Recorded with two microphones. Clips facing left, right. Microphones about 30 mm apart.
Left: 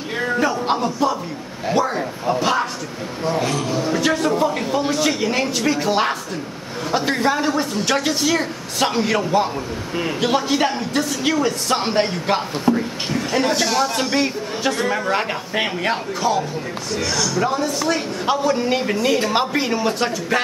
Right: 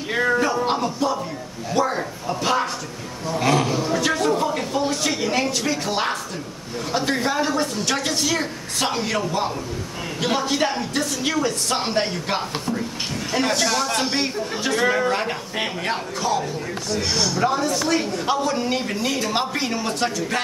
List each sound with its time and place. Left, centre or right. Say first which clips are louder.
0.1 s speech: right 3 dB; centre
0.7 s a man's voice: left 2 dB; centre
12.6 s a man's voice: left 6 dB; centre
13.3 s speech: left 1 dB; centre
15.1 s a man's voice: left 3 dB; centre
17.0 s speech: left 2 dB; right
17.4 s a man's voice: even; centre